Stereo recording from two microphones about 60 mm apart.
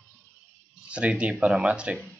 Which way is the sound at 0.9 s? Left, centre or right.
Right.